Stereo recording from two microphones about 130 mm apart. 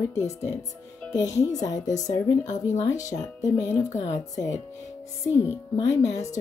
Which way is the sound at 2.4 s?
65° left (ahead or behind).